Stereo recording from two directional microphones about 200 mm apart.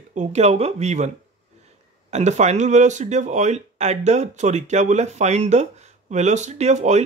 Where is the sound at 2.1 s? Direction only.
35° right (ahead or behind).